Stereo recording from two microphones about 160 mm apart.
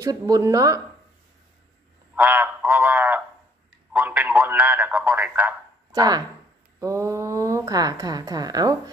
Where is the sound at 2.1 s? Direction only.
10° right (ahead or behind).